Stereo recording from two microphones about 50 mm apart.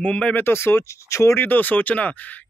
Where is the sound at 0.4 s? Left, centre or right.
Left.